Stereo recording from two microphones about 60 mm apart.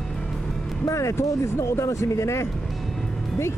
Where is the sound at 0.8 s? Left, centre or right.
Left.